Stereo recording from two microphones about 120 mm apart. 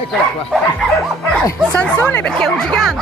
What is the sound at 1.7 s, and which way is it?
Speech, 10° left (ahead or behind).